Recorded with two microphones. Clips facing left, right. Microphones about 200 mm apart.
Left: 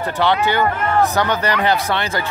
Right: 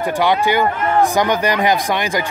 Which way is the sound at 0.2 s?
10° right (ahead or behind).